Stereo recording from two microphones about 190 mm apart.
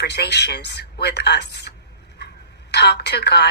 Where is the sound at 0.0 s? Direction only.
60° left (ahead or behind).